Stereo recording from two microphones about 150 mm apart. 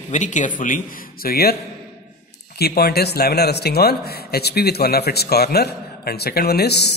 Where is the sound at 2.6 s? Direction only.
90° left.